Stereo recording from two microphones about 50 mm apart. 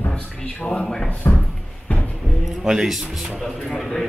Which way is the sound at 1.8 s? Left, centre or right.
Left.